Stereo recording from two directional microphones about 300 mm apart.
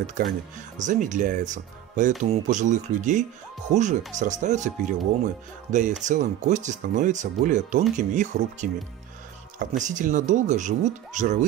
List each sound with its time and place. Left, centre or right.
0.7 s speech: right